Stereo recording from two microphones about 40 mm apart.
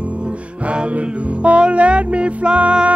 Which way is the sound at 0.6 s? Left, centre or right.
Right.